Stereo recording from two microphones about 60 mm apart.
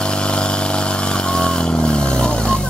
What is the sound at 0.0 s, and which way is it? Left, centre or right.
Vehicle, centre.